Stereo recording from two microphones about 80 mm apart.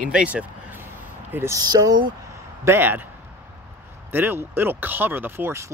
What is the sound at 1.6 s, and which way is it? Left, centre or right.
Speech, right.